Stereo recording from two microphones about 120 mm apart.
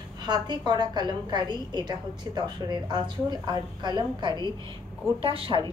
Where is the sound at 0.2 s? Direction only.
35° right (ahead or behind).